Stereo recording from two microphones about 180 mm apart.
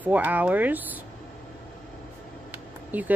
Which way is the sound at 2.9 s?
10° right (ahead or behind).